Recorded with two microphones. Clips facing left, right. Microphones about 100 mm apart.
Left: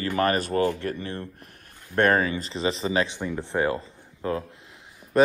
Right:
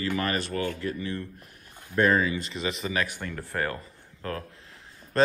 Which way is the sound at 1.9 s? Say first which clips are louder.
Left 2 dB; 55° left (ahead or behind).